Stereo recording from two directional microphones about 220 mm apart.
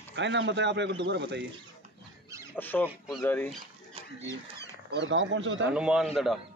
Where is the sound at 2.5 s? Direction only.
10° left (ahead or behind).